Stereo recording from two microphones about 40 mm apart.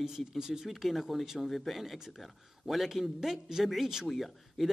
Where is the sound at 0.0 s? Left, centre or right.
Centre.